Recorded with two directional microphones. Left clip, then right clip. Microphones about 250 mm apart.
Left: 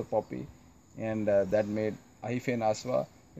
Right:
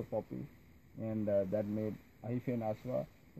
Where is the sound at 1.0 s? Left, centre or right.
Centre.